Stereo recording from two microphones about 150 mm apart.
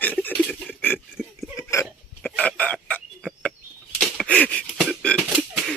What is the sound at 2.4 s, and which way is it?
Fowl, 10° left (ahead or behind).